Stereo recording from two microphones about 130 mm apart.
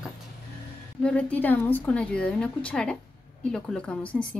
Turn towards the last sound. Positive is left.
turn(degrees=10)  # may be behind; listen again after turning